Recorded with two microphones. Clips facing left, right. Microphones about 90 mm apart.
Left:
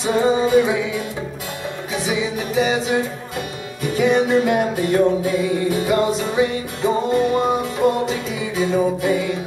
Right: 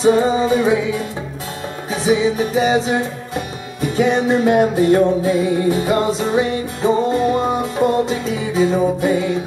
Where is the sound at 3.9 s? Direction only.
30° right (ahead or behind).